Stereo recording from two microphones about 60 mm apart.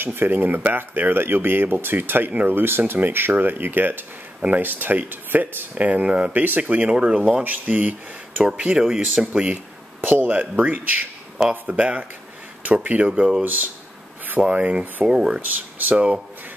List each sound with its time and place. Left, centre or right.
0.0 s speech: right; by 9.3 s centre
9.3 s speech: right
15.5 s speech: right